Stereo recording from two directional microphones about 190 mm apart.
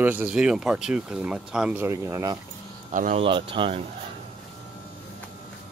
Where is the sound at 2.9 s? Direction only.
35° right (ahead or behind).